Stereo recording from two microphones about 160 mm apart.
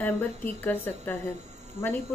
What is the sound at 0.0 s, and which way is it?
A woman's voice, 15° left (ahead or behind).